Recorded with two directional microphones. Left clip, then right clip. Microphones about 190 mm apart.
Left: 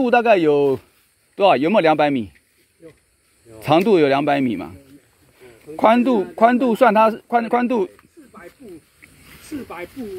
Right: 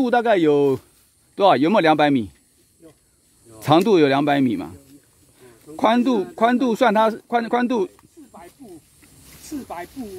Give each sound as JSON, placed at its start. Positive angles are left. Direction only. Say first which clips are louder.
{"t": 0.0, "sound": "speech", "louder": "left 3 dB", "side_deg": -45}
{"t": 3.5, "sound": "speech", "louder": "left 1 dB", "side_deg": -45}
{"t": 5.8, "sound": "speech", "louder": "left 3 dB", "side_deg": -35}